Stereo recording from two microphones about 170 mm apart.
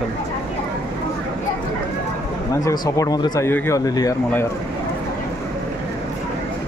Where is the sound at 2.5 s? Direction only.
20° left (ahead or behind).